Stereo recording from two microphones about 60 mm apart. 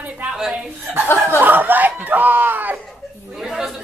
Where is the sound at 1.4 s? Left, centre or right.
Right.